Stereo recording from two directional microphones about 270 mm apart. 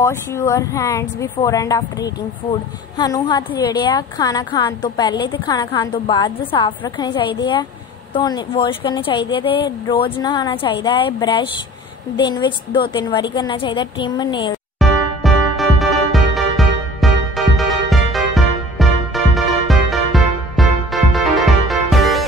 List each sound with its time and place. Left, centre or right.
0.0 s a woman's voice: centre
14.8 s music: centre